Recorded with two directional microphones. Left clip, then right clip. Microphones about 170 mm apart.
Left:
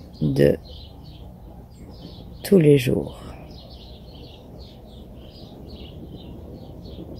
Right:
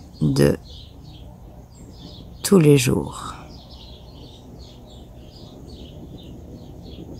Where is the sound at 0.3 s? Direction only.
30° right (ahead or behind).